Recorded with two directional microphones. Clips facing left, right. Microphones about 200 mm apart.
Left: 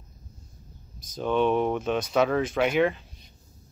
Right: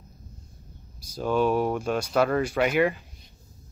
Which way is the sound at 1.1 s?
5° right (ahead or behind).